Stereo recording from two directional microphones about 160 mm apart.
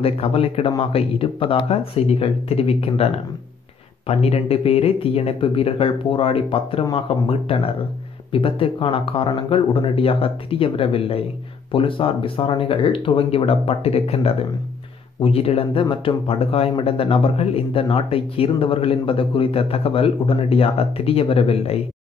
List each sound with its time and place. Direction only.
0.0 s speech: 35° left (ahead or behind)
4.1 s speech: 40° left (ahead or behind)